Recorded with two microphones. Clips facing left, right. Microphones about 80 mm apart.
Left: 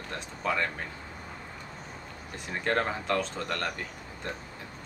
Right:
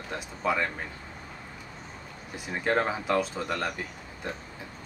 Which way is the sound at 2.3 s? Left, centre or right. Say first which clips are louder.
Right 2 dB; centre.